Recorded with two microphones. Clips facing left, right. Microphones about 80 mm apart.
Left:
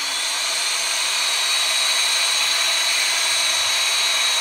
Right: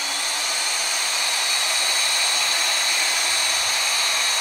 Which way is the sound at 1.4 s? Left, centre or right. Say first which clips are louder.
Even; right.